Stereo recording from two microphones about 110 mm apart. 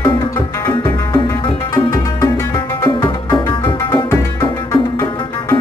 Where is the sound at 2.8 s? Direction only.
45° left (ahead or behind).